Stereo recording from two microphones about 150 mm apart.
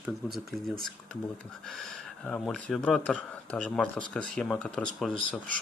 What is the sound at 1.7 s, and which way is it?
Speech, 5° left (ahead or behind).